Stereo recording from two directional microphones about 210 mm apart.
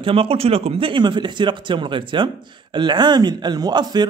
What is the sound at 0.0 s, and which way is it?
Speech, 25° right (ahead or behind).